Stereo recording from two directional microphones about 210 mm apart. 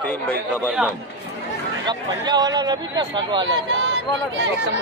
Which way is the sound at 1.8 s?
20° right (ahead or behind).